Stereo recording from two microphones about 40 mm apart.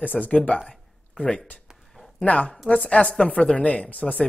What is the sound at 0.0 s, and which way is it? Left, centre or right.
Speech, left.